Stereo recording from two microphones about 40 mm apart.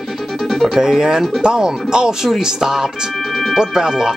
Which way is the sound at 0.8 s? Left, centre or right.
Centre.